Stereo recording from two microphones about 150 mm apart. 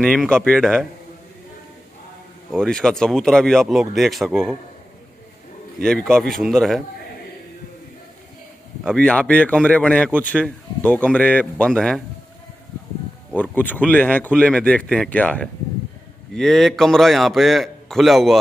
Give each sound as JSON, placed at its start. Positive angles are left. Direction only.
{"t": 0.0, "sound": "a man's voice", "side_deg": 5}
{"t": 2.6, "sound": "a man's voice", "side_deg": 5}
{"t": 5.8, "sound": "a man's voice", "side_deg": 5}
{"t": 8.8, "sound": "speech", "side_deg": 5}
{"t": 13.4, "sound": "a man's voice", "side_deg": 10}